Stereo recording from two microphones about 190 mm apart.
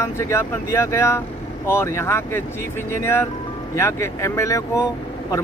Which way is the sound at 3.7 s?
15° left (ahead or behind).